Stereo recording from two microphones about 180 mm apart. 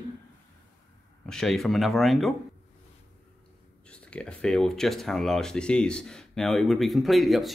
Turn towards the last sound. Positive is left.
turn(degrees=0)  # may be behind; listen again after turning